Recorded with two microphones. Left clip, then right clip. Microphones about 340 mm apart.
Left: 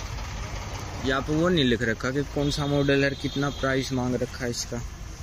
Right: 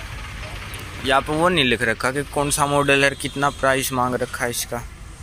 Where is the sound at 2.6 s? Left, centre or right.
Right.